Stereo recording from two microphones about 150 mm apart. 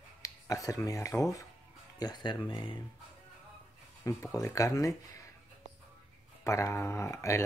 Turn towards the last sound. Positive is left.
turn(degrees=20)  # may be behind; listen again after turning